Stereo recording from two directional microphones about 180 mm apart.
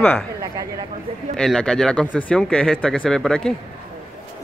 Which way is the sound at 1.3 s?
5° left (ahead or behind).